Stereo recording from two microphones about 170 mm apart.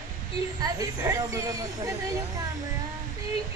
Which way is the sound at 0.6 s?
20° right (ahead or behind).